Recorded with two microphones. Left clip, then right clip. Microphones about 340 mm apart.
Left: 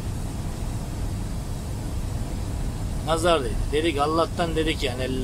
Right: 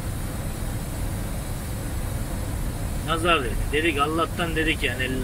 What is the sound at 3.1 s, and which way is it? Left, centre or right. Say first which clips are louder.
Speech: left 1 dB; centre.